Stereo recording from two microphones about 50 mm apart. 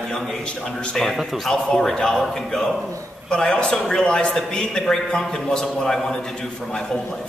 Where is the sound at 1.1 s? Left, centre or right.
Centre.